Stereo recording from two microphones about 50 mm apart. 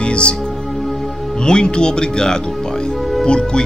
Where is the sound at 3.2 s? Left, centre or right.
Centre.